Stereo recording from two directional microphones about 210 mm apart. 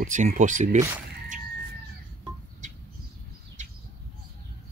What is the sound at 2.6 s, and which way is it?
Bird, 35° right (ahead or behind).